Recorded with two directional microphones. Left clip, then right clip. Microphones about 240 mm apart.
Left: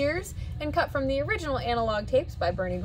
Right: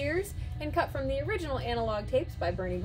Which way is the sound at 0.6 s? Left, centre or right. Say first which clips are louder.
Left 4 dB; centre.